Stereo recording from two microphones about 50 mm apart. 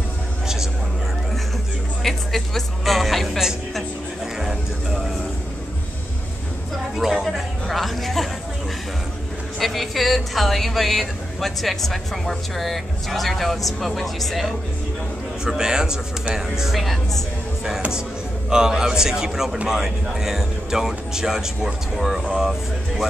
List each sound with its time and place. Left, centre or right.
2.0 s speech: centre
7.2 s speech: centre
9.6 s speech: centre
15.4 s speech: centre
18.5 s speech: centre